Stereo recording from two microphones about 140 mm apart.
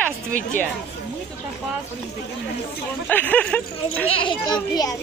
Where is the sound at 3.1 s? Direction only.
10° left (ahead or behind).